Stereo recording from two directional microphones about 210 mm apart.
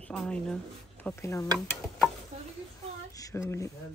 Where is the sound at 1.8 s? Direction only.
Centre (ahead or behind).